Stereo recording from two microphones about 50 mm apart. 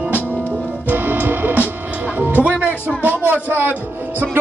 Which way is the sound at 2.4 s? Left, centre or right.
Right.